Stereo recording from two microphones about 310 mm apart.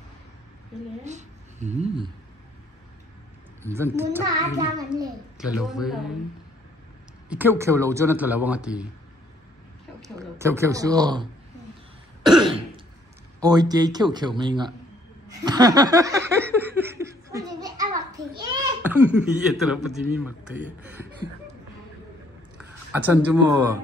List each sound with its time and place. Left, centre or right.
1.0 s a woman's voice: right
3.6 s a child's voice: centre
7.2 s a man's voice: centre
10.0 s a child's voice: centre
12.2 s throat clearing: centre
13.4 s a child's voice: centre
15.2 s laughter: centre
22.9 s a child's voice: centre